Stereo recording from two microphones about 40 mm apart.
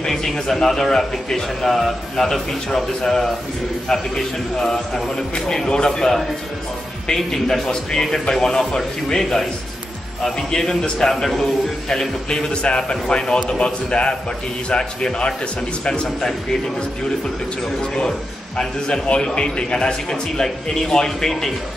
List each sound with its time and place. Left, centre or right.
0.1 s a man's voice: centre
7.7 s a man's voice: centre
11.9 s a man's voice: centre
18.6 s a man's voice: left